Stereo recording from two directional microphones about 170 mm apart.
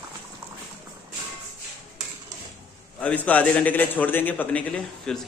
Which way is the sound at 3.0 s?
10° left (ahead or behind).